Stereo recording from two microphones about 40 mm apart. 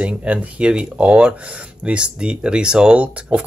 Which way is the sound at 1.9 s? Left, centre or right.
Right.